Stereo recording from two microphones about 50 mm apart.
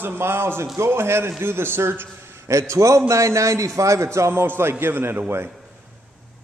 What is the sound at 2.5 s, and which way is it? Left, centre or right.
A man's voice, right.